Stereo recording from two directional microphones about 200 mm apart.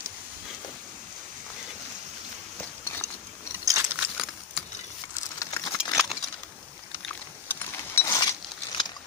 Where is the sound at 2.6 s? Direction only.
10° left (ahead or behind).